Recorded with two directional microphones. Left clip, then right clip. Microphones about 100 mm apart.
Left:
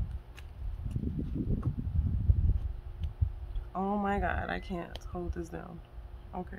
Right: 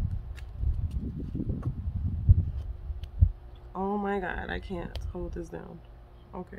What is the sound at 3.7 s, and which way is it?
A woman's voice, 35° left (ahead or behind).